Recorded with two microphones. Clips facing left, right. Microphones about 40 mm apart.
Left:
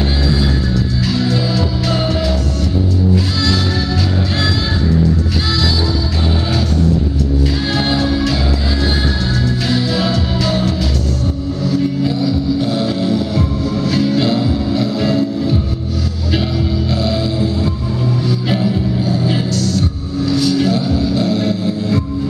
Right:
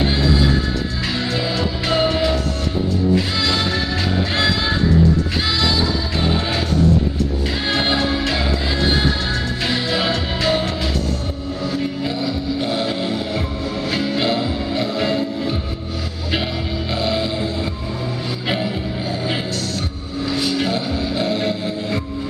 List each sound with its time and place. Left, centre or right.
1.0 s music: centre
3.3 s music: centre
7.7 s music: centre
9.7 s music: centre
16.9 s music: centre